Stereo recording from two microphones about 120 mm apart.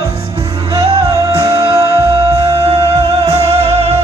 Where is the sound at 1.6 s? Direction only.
55° right (ahead or behind).